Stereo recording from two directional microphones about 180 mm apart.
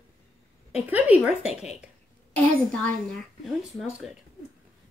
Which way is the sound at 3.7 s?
Centre (ahead or behind).